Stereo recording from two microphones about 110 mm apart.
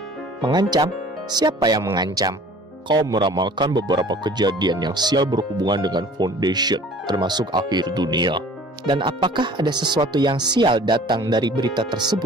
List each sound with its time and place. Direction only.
0.4 s speech: 40° right (ahead or behind)